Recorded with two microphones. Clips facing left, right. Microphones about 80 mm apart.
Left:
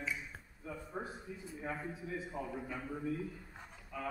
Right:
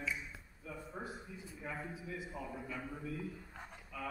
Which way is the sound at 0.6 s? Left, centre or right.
Left.